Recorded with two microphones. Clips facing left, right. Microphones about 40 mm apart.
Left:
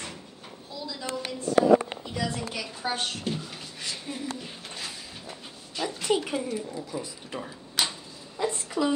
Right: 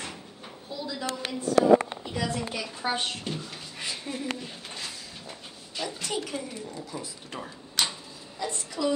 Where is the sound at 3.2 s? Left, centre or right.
Centre.